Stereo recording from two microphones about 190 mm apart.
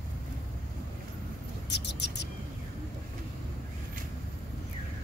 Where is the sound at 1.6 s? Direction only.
60° left (ahead or behind).